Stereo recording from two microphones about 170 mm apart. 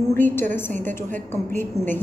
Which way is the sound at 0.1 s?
15° left (ahead or behind).